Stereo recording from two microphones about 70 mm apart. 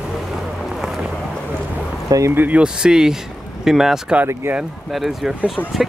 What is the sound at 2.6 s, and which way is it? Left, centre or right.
Speech, centre.